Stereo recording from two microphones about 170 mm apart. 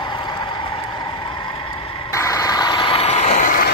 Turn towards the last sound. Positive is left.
turn(degrees=40)  # may be behind; listen again after turning